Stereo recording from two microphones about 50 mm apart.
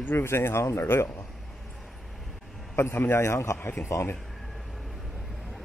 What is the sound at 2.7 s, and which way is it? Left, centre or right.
Speech, left.